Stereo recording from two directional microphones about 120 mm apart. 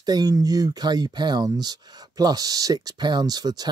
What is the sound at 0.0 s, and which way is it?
Speech, 35° right (ahead or behind).